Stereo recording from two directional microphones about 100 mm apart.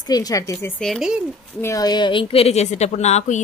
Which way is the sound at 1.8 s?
50° left (ahead or behind).